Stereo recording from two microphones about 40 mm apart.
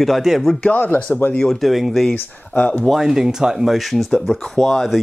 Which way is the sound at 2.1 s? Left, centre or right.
Left.